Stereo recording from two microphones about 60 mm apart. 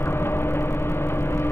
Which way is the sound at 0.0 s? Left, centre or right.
Left.